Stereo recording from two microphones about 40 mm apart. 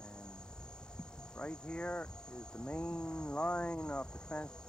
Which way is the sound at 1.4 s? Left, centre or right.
Left.